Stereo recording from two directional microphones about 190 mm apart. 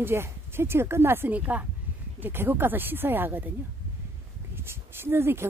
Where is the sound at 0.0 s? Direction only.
10° right (ahead or behind).